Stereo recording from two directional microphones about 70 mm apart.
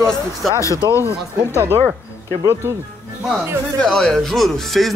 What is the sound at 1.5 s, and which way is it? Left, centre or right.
Speech, right.